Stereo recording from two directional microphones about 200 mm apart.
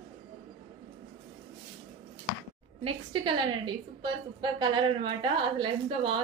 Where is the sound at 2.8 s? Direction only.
25° right (ahead or behind).